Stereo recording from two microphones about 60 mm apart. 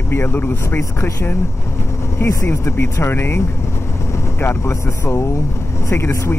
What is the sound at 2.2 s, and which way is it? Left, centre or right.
Speech, left.